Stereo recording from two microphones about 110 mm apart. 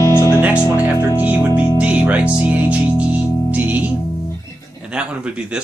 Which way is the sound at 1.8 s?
10° right (ahead or behind).